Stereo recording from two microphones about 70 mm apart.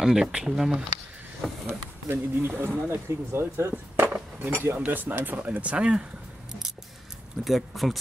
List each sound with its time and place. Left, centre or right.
0.0 s speech: centre
2.0 s speech: right
3.7 s cutlery: right
4.6 s speech: right
7.4 s speech: centre